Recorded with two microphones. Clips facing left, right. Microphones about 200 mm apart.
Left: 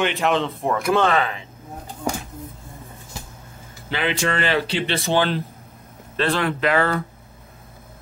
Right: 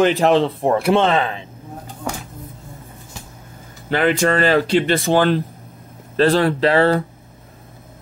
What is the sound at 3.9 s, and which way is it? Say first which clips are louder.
Speech: right 7 dB; 50° right (ahead or behind).